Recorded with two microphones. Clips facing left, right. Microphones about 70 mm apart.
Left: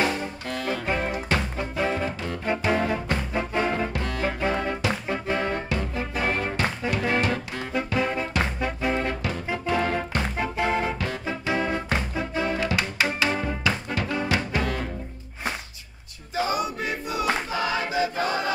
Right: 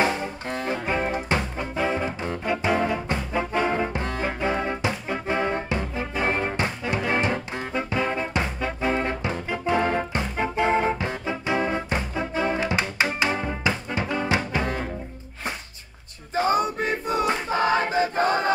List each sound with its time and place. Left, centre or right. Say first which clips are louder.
0.0 s music: right 2 dB; right
0.8 s music: right 2 dB; centre
1.1 s music: right 1 dB; right
4.4 s music: right 2 dB; centre
16.3 s male singing: right 4 dB; right
17.5 s choir: right 5 dB; right